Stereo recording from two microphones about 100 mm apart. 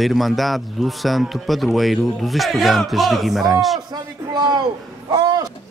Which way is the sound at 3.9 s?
45° right (ahead or behind).